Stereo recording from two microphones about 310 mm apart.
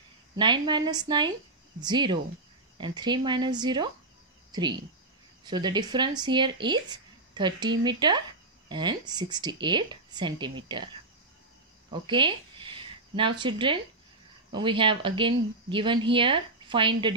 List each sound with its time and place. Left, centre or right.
0.4 s speech: centre